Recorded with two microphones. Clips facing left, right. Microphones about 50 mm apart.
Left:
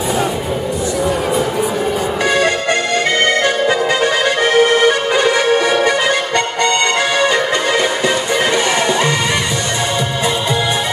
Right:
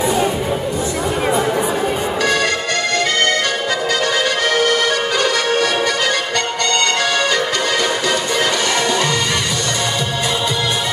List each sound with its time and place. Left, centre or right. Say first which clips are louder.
2.2 s music: left 3 dB; left
3.6 s accordion: left 4 dB; left